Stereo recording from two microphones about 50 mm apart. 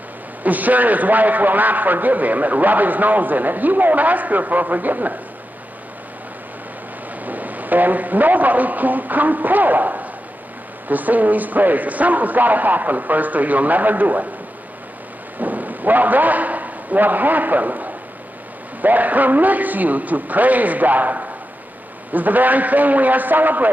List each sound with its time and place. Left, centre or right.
0.4 s a man's voice: right
7.2 s a man's voice: right
15.3 s thunder: right
18.8 s a man's voice: right